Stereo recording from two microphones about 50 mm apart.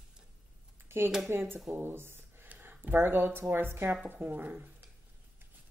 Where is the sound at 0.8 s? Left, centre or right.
Right.